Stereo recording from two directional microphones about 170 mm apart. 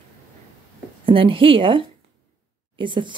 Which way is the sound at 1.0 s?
30° right (ahead or behind).